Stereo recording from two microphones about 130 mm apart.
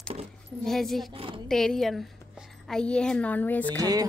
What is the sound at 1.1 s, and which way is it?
Speech, 45° right (ahead or behind).